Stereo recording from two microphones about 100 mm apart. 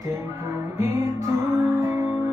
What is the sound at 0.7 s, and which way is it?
Music, 25° right (ahead or behind).